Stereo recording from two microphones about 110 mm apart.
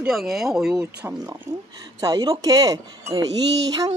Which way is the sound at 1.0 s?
15° right (ahead or behind).